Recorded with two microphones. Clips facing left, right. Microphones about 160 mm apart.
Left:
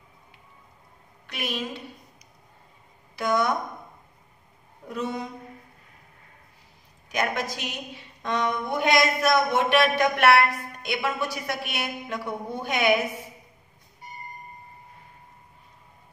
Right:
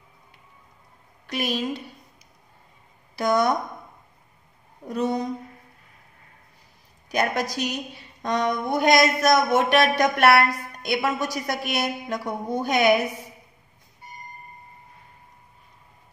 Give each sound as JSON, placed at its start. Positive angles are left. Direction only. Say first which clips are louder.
{"t": 1.2, "sound": "a woman's voice", "louder": "right 5 dB", "side_deg": -40}
{"t": 3.2, "sound": "a woman's voice", "louder": "right 3 dB", "side_deg": -35}
{"t": 4.8, "sound": "a woman's voice", "louder": "right 6 dB", "side_deg": -40}
{"t": 7.1, "sound": "a woman's voice", "louder": "right 3 dB", "side_deg": -35}